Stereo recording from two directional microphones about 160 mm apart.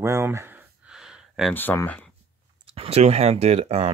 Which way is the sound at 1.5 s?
15° left (ahead or behind).